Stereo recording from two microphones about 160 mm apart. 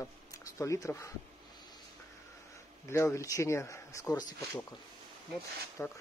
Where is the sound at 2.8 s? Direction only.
15° left (ahead or behind).